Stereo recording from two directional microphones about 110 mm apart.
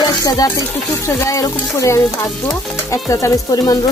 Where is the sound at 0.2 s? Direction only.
35° left (ahead or behind).